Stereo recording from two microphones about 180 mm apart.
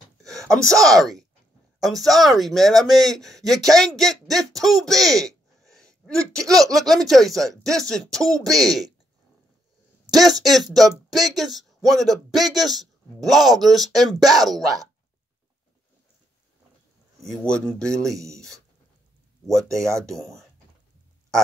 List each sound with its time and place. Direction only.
0.8 s speech: centre (ahead or behind)
10.1 s speech: centre (ahead or behind)
17.3 s speech: 5° left (ahead or behind)
19.7 s speech: 15° right (ahead or behind)